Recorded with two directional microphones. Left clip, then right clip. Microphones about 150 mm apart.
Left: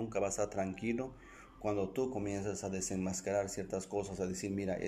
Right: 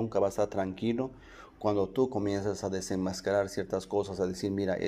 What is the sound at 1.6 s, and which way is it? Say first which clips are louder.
Speech: right 7 dB; 5° right (ahead or behind).